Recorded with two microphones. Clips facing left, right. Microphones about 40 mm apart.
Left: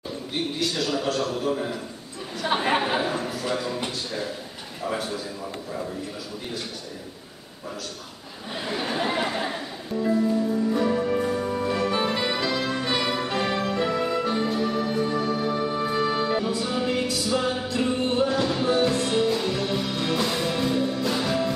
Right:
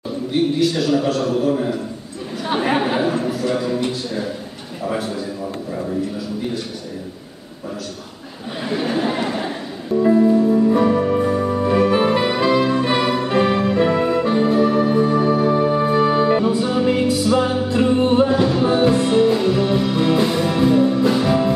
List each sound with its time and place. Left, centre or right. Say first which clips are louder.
0.6 s a man's voice: right 9 dB; centre
2.4 s a sound: right 4 dB; centre
8.6 s chatter: right 6 dB; centre
10.0 s music: right 9 dB; right